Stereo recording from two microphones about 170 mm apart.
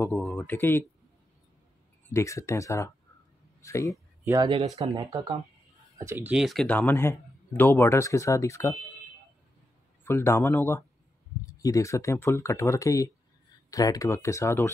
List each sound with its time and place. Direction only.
0.2 s speech: 5° left (ahead or behind)
2.1 s speech: 15° left (ahead or behind)
4.5 s speech: 35° right (ahead or behind)
4.9 s speech: 25° right (ahead or behind)
5.9 s speech: 15° right (ahead or behind)
6.3 s speech: centre (ahead or behind); by 8.7 s 20° left (ahead or behind)
10.0 s speech: 15° left (ahead or behind)